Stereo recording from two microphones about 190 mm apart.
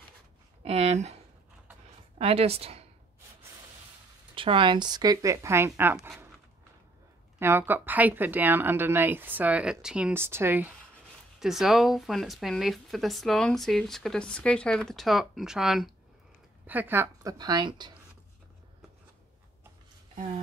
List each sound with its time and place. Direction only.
0.7 s a sound: 35° right (ahead or behind)
2.1 s a woman's voice: 30° right (ahead or behind)
4.4 s speech: 25° right (ahead or behind); by 6.1 s 10° right (ahead or behind)
7.3 s a woman's voice: 10° right (ahead or behind)